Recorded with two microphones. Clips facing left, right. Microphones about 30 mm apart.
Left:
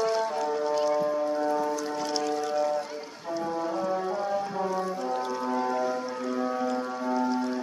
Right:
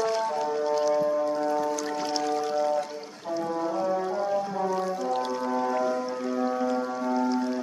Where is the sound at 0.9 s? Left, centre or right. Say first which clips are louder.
Right 2 dB; centre.